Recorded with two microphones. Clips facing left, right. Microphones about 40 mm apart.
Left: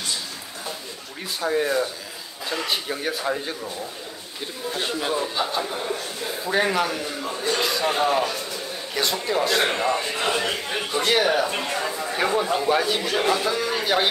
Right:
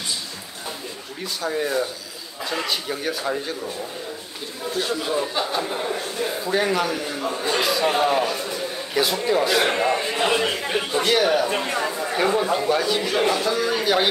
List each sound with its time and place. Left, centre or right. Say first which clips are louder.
1.2 s speech: left 2 dB; centre
4.7 s speech: right 2 dB; left
5.5 s a man's voice: right 2 dB; centre
6.4 s a man's voice: left 1 dB; centre
11.1 s a man's voice: even; centre
11.6 s a man's voice: right 2 dB; centre
12.6 s speech: even; centre
13.1 s a man's voice: right 1 dB; centre